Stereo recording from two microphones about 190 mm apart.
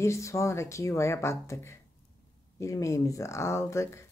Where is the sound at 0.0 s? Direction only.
15° left (ahead or behind).